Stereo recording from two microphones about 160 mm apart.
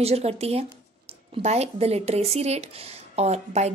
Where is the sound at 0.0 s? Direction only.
40° right (ahead or behind).